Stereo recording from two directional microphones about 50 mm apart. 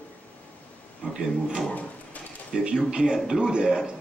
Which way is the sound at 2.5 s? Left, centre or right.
Centre.